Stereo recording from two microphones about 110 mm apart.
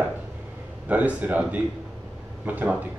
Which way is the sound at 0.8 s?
15° right (ahead or behind).